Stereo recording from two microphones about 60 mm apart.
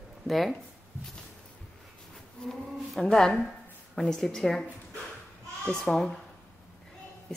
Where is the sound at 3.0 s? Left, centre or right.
Centre.